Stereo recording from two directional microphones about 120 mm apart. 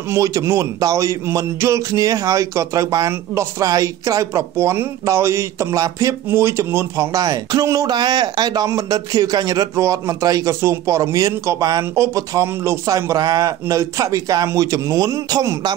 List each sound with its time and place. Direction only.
0.1 s speech: 25° right (ahead or behind)